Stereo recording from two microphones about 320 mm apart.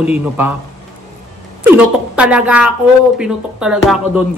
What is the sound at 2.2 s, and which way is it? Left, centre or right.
A man's voice, centre.